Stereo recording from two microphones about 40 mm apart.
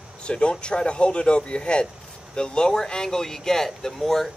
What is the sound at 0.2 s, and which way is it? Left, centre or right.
A man's voice, left.